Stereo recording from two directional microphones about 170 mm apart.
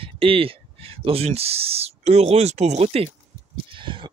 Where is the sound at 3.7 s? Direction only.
30° right (ahead or behind).